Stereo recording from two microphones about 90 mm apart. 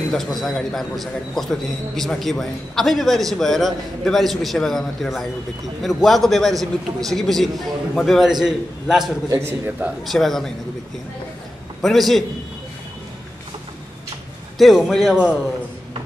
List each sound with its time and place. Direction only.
0.1 s a man's voice: centre (ahead or behind)
9.3 s a man's voice: 30° right (ahead or behind)
9.7 s a man's voice: 15° right (ahead or behind)
10.0 s a man's voice: 5° left (ahead or behind)
11.8 s a man's voice: centre (ahead or behind)
14.6 s a man's voice: centre (ahead or behind)